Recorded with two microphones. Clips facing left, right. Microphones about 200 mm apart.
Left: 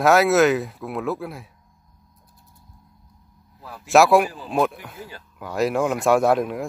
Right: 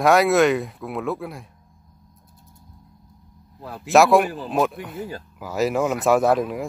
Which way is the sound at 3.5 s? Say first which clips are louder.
Right 4 dB; 60° right (ahead or behind).